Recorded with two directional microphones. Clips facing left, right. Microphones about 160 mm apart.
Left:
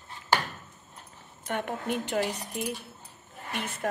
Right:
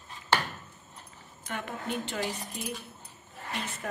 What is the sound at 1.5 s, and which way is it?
A woman's voice, 65° left (ahead or behind).